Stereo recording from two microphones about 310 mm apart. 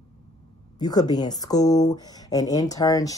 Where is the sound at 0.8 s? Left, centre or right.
Centre.